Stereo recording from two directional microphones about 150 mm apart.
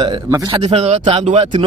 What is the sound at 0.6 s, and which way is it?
Speech, 50° right (ahead or behind).